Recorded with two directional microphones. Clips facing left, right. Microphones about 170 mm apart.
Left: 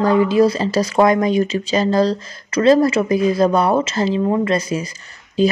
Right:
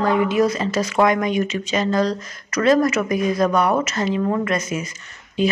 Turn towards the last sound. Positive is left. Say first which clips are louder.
# left 4 dB
turn(degrees=35)  # may be behind; listen again after turning